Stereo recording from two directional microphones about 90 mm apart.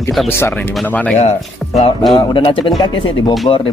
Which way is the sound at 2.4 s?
65° left (ahead or behind).